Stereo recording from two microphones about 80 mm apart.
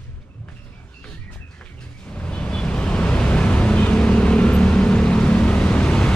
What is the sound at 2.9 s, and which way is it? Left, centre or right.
Vehicle, centre.